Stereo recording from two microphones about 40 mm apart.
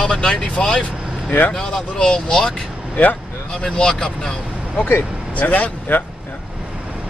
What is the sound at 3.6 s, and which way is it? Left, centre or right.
Speech, centre.